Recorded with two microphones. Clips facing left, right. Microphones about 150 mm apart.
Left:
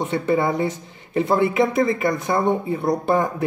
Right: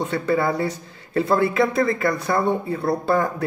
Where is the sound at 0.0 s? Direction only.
20° left (ahead or behind).